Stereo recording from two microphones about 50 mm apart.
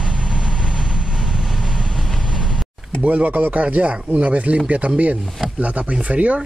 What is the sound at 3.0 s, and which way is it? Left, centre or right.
Speech, right.